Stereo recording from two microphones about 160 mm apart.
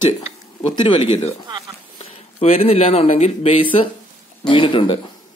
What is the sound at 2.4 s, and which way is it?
Speech, 40° left (ahead or behind).